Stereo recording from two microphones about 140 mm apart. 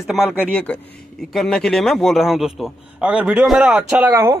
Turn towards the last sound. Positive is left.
turn(degrees=-15)  # may be behind; listen again after turning